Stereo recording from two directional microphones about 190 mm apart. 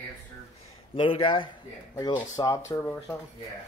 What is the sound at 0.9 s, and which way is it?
Speech, 30° left (ahead or behind).